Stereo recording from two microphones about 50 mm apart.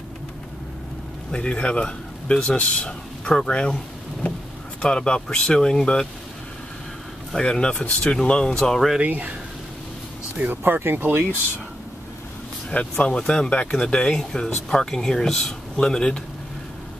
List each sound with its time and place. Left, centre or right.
1.3 s speech: centre
4.8 s speech: centre
7.3 s speech: centre
9.0 s speech: right
10.3 s speech: right
10.6 s speech: right
12.7 s speech: left